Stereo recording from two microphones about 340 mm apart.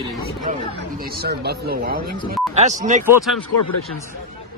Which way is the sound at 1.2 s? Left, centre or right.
Right.